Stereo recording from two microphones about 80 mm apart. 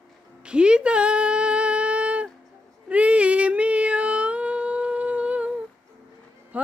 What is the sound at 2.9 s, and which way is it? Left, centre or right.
Child singing, centre.